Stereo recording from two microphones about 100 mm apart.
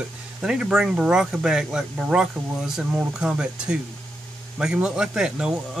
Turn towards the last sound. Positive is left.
turn(degrees=-5)  # may be behind; listen again after turning